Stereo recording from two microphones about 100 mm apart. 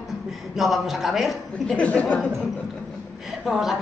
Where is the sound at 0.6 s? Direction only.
Centre (ahead or behind).